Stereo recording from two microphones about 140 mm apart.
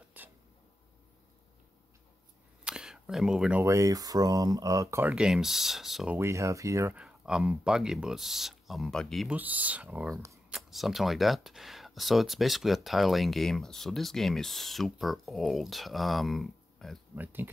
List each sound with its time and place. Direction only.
0.2 s a sound: 10° right (ahead or behind)
2.6 s a sound: 5° right (ahead or behind)
3.6 s speech: 20° right (ahead or behind)
5.0 s speech: 5° right (ahead or behind)
6.1 s speech: 20° right (ahead or behind)
7.0 s speech: 5° right (ahead or behind)
9.3 s speech: 10° right (ahead or behind)
17.1 s speech: 15° right (ahead or behind)